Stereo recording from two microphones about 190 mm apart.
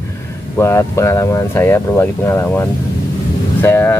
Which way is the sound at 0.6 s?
15° left (ahead or behind).